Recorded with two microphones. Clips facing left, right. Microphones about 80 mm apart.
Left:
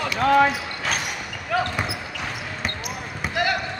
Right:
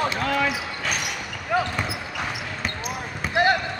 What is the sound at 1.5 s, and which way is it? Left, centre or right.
Basketball bounce, centre.